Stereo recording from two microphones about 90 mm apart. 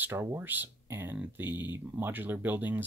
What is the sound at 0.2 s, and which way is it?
Speech, 25° right (ahead or behind).